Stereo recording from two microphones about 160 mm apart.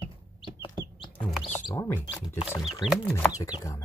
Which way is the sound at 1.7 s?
10° left (ahead or behind).